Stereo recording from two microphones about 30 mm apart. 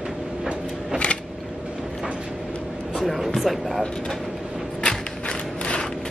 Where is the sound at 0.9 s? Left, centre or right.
Right.